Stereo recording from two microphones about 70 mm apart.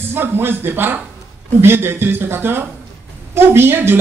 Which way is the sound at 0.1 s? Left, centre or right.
Right.